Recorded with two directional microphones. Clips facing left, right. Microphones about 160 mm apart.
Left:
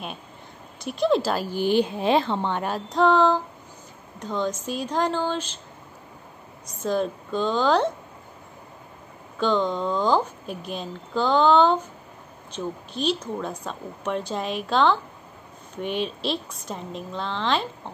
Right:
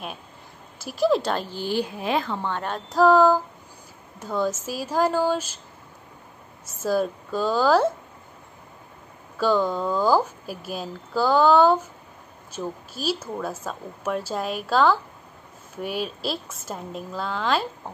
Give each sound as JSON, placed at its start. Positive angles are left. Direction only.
{"t": 0.7, "sound": "a woman's voice", "side_deg": -5}
{"t": 2.6, "sound": "speech", "side_deg": 5}
{"t": 3.0, "sound": "speech", "side_deg": -5}
{"t": 6.6, "sound": "speech", "side_deg": -5}
{"t": 9.4, "sound": "speech", "side_deg": -5}